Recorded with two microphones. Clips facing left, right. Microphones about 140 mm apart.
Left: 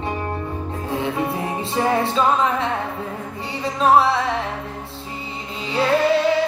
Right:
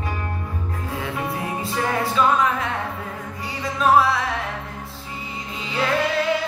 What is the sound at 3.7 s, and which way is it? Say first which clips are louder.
Music: left 2 dB; 30° left (ahead or behind).